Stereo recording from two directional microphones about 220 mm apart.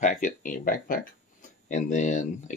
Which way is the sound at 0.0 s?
35° left (ahead or behind).